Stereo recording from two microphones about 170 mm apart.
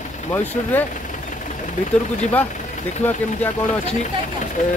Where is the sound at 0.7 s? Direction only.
10° left (ahead or behind).